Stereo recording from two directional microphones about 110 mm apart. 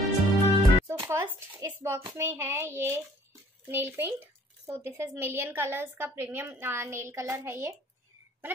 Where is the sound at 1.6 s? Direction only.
25° right (ahead or behind).